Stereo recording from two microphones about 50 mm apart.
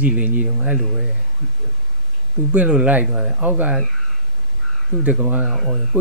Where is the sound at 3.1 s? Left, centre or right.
Centre.